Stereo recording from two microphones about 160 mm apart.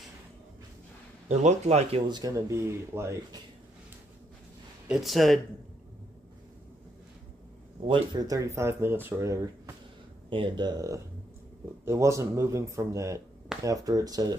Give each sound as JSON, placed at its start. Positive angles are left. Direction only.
{"t": 1.3, "sound": "speech", "side_deg": -45}
{"t": 2.0, "sound": "speech", "side_deg": -25}
{"t": 4.8, "sound": "speech", "side_deg": 0}
{"t": 7.8, "sound": "speech", "side_deg": -30}
{"t": 10.3, "sound": "speech", "side_deg": -30}